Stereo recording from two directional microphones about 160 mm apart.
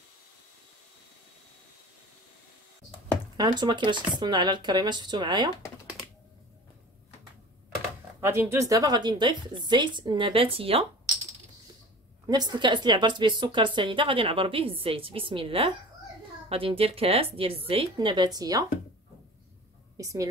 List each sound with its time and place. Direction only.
3.3 s a woman's voice: 30° right (ahead or behind)
8.2 s a woman's voice: 15° right (ahead or behind); by 10.9 s 35° right (ahead or behind)
12.3 s a woman's voice: 25° right (ahead or behind)
20.0 s a woman's voice: 20° right (ahead or behind)